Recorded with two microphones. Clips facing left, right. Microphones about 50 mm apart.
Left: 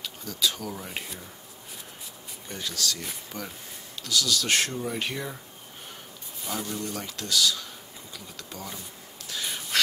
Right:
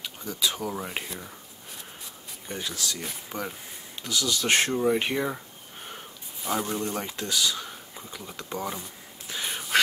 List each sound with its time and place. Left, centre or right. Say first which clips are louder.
0.0 s speech: even; centre
2.4 s speech: left 1 dB; centre
6.4 s speech: right 4 dB; right
9.3 s whispering: right 2 dB; centre